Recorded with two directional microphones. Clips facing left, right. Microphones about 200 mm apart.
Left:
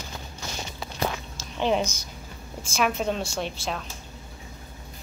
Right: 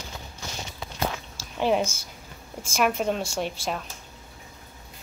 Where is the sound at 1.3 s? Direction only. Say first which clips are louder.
Right 2 dB; 10° right (ahead or behind).